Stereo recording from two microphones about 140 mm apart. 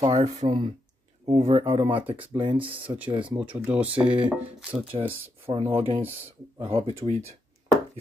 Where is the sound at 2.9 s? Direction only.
25° right (ahead or behind).